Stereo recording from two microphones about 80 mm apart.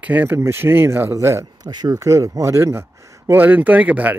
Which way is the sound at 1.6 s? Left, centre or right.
Right.